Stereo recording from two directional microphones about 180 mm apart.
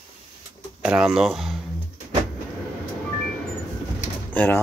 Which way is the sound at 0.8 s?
5° right (ahead or behind).